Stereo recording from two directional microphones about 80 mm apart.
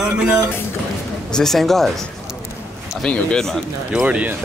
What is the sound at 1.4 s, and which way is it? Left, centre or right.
Speech, centre.